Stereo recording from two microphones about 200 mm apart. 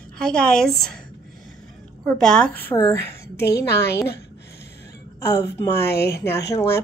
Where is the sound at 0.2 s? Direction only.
5° left (ahead or behind).